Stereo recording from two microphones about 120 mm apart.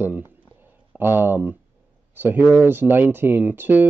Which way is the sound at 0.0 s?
15° right (ahead or behind).